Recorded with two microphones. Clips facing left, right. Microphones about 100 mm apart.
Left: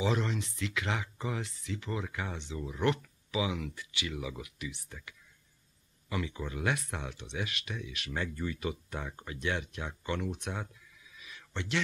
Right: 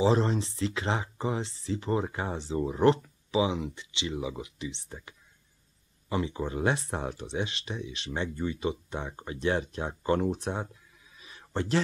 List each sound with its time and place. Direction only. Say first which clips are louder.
0.0 s speech: right 7 dB; 35° right (ahead or behind)